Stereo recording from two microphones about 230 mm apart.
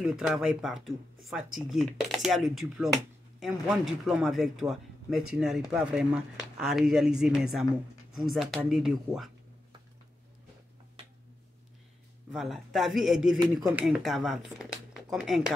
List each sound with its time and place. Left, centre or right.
0.0 s speech: centre
12.3 s speech: centre
13.4 s speech: centre
13.7 s speech: centre